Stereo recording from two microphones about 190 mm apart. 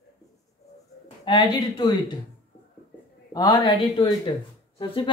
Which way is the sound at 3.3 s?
20° left (ahead or behind).